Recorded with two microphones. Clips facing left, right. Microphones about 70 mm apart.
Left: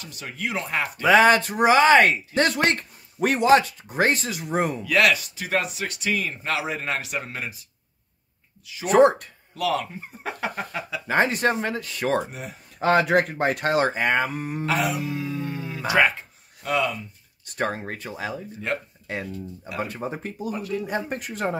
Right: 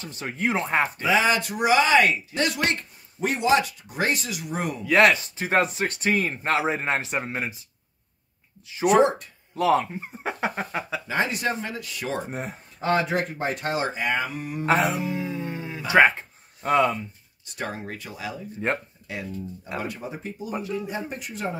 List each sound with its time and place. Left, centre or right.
0.0 s speech: right
1.0 s speech: left
4.8 s speech: right
8.7 s speech: right
11.1 s speech: left
12.3 s speech: right
12.8 s speech: left
14.7 s speech: right
17.6 s speech: left